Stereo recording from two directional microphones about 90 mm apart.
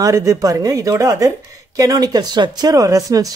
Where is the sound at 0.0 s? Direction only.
40° right (ahead or behind).